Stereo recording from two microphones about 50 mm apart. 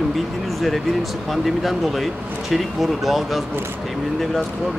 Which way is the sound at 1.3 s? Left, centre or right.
Centre.